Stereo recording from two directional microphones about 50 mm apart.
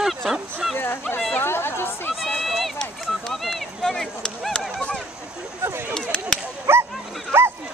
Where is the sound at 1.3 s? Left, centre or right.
Left.